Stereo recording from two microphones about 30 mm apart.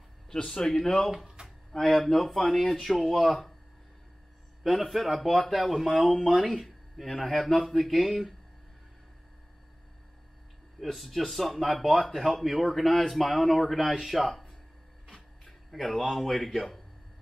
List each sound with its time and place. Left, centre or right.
0.5 s speech: centre
1.1 s a sound: right
1.7 s speech: centre
2.7 s speech: centre
4.6 s speech: centre
10.8 s speech: centre
15.7 s speech: centre